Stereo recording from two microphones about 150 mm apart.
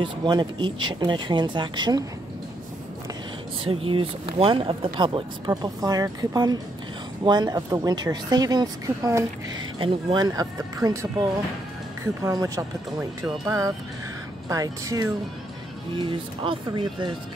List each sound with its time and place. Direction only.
0.0 s speech: 30° right (ahead or behind)
3.6 s a woman's voice: 35° right (ahead or behind); by 9.2 s 20° right (ahead or behind)
9.8 s speech: 35° right (ahead or behind)
10.2 s a woman's voice: 25° right (ahead or behind)
12.2 s a woman's voice: 20° right (ahead or behind)
16.0 s speech: 35° right (ahead or behind)